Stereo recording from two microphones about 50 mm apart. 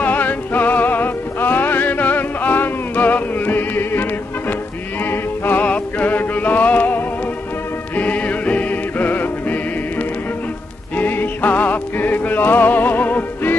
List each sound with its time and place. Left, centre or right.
0.0 s music: left